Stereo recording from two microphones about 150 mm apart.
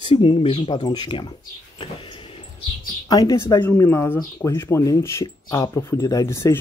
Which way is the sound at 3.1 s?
25° left (ahead or behind).